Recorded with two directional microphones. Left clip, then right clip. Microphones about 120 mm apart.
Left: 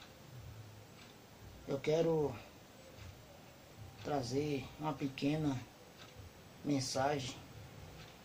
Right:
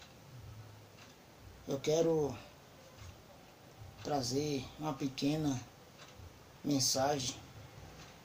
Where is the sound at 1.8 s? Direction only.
30° right (ahead or behind).